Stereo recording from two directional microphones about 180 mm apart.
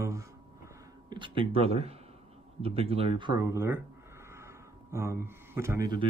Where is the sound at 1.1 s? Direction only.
30° right (ahead or behind).